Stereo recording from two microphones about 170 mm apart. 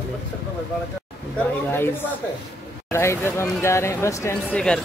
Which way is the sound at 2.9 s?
15° left (ahead or behind).